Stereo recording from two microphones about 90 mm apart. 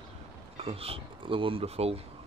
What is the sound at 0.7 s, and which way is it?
Speech, 90° right.